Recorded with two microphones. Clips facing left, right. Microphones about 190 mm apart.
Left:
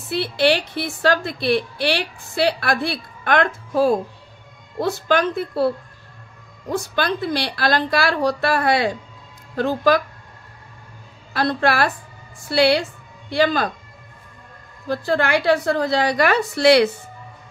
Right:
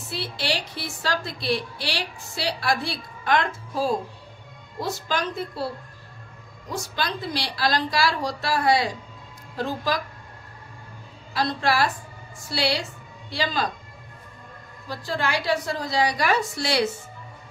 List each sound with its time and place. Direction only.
0.1 s a woman's voice: 60° left (ahead or behind)
6.7 s a woman's voice: 60° left (ahead or behind)
11.3 s a woman's voice: 60° left (ahead or behind)
14.9 s a woman's voice: 60° left (ahead or behind)